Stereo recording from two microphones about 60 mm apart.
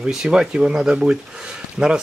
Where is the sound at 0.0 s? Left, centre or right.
Centre.